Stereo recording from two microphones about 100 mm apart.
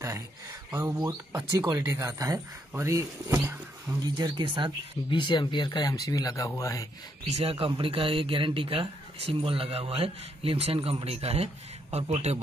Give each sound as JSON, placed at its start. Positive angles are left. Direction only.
{"t": 0.7, "sound": "speech", "side_deg": -30}
{"t": 4.0, "sound": "speech", "side_deg": -45}
{"t": 5.1, "sound": "speech", "side_deg": 55}
{"t": 7.2, "sound": "speech", "side_deg": -85}